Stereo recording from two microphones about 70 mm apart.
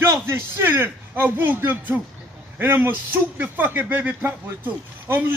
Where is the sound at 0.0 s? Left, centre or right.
Right.